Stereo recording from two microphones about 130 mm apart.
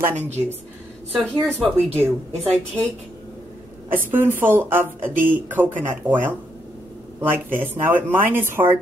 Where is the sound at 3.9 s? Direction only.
15° right (ahead or behind).